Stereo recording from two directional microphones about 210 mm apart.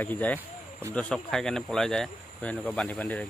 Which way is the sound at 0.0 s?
10° left (ahead or behind).